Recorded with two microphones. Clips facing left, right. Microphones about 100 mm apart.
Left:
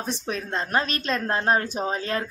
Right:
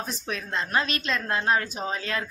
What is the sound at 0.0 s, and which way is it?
A woman's voice, 35° left (ahead or behind).